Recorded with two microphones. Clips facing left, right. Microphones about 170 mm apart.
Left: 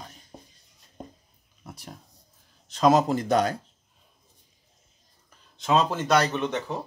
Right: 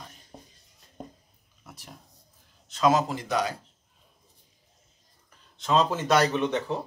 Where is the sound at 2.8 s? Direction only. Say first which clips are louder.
Left 3 dB; 50° left (ahead or behind).